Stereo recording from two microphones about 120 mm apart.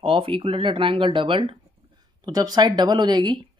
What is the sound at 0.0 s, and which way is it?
Speech, 50° right (ahead or behind).